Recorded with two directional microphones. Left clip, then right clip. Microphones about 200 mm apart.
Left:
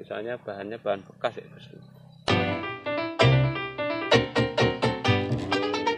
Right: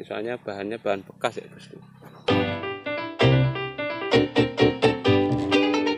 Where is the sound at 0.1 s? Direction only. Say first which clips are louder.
Right 2 dB; 45° right (ahead or behind).